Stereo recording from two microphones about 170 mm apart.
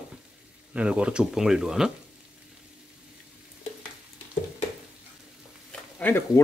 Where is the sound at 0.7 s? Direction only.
5° right (ahead or behind).